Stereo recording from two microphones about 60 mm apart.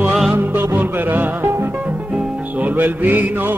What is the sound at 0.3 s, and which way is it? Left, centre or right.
Music, right.